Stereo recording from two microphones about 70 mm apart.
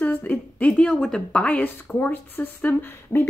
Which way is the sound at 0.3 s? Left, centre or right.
Centre.